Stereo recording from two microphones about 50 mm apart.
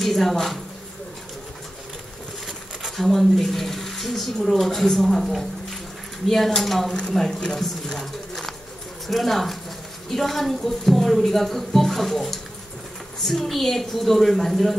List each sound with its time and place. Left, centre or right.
0.0 s speech: centre
2.4 s speech: centre
6.9 s speech: centre